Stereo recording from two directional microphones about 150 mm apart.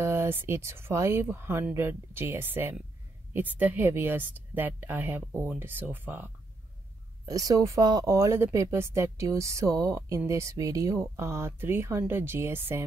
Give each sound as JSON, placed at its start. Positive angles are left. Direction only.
{"t": 0.0, "sound": "speech", "side_deg": -15}
{"t": 7.2, "sound": "speech", "side_deg": -25}